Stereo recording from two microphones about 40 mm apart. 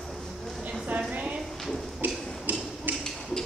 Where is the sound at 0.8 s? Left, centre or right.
Right.